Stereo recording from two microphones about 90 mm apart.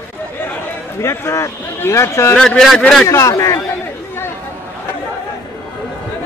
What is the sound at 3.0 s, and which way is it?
Speech, 35° left (ahead or behind).